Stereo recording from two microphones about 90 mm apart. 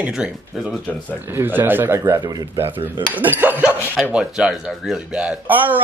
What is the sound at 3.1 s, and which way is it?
Speech, 20° right (ahead or behind).